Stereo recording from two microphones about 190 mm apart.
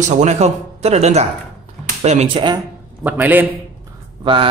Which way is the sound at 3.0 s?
10° right (ahead or behind).